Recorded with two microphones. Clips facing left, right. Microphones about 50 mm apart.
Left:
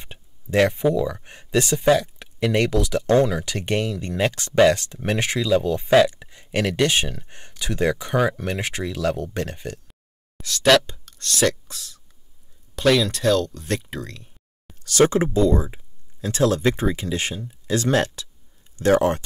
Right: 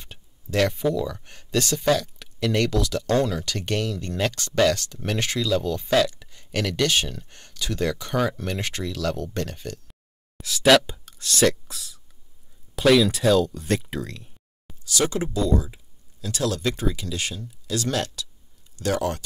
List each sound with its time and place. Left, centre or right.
0.0 s speech: left
10.4 s speech: centre
14.8 s a sound: left
15.0 s speech: left